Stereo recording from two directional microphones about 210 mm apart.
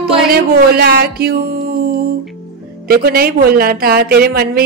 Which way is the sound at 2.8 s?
45° right (ahead or behind).